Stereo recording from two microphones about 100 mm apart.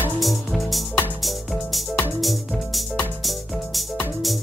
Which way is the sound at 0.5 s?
Centre (ahead or behind).